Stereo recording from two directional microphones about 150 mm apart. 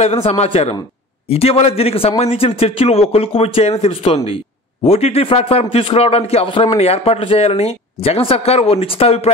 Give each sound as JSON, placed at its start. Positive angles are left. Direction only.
{"t": 0.0, "sound": "a man's voice", "side_deg": 45}